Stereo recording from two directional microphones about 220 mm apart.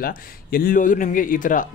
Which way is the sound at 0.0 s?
40° left (ahead or behind).